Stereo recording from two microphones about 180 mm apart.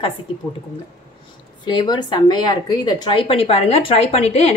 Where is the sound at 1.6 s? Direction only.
25° left (ahead or behind).